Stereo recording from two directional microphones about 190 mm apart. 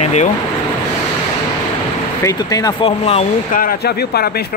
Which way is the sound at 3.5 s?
50° left (ahead or behind).